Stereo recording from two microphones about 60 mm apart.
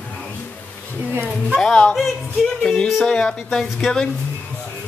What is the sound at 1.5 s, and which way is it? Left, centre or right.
Speech, centre.